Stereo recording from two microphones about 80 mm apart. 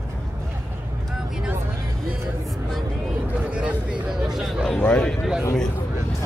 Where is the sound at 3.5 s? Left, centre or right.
Centre.